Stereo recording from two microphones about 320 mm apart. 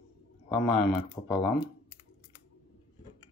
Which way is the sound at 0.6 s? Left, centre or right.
Centre.